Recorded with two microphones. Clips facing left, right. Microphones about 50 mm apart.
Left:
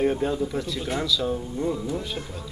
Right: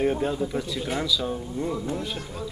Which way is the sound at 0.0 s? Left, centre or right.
Centre.